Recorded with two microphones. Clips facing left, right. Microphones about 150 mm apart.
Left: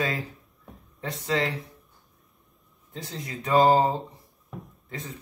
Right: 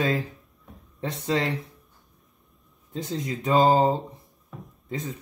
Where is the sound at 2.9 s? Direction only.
20° right (ahead or behind).